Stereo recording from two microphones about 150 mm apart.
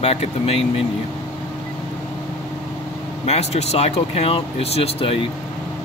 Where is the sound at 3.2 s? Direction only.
45° left (ahead or behind).